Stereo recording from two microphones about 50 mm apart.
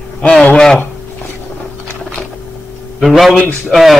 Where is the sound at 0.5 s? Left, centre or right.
Centre.